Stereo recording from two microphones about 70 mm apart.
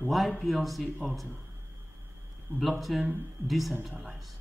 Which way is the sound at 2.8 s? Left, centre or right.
Centre.